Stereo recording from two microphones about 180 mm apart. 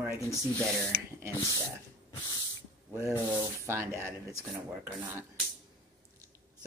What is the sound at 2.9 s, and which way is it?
Speech, 15° right (ahead or behind).